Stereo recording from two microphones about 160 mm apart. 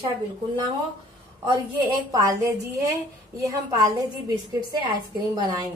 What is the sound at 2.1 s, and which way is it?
A woman's voice, 20° right (ahead or behind).